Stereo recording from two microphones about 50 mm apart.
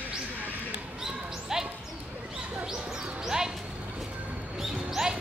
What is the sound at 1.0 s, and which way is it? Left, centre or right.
Basketball bounce, centre.